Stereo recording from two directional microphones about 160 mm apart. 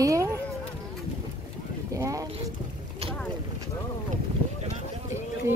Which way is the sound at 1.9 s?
20° right (ahead or behind).